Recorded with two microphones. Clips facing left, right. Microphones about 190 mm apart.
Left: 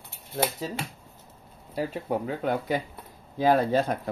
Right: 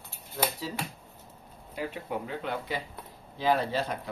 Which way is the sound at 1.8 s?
40° left (ahead or behind).